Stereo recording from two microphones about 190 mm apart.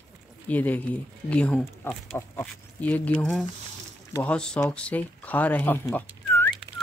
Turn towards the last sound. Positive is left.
turn(degrees=10)  # may be behind; listen again after turning